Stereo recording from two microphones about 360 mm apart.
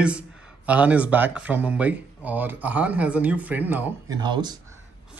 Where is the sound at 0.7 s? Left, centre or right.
Centre.